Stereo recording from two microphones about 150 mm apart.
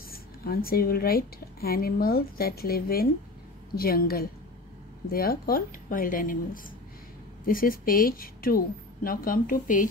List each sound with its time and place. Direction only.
0.1 s a woman's voice: 80° left; by 9.8 s 65° left (ahead or behind)